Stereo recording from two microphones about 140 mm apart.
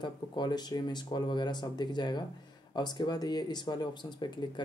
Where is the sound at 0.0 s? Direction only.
30° left (ahead or behind).